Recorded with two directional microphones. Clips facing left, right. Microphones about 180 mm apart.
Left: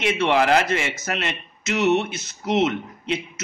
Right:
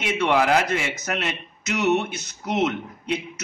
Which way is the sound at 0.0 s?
5° right (ahead or behind).